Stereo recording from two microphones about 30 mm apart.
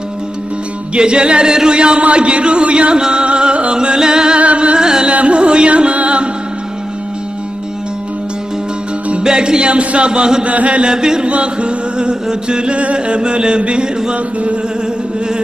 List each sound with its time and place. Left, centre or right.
0.9 s speech: right
3.0 s music: right
4.4 s music: right
4.7 s music: right
5.1 s music: right
9.2 s music: right
9.7 s speech: right
10.4 s chant: right
10.8 s music: right
11.2 s speech: right
12.7 s speech: right